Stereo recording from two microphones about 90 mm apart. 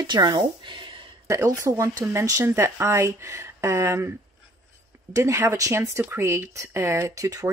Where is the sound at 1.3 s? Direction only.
35° right (ahead or behind).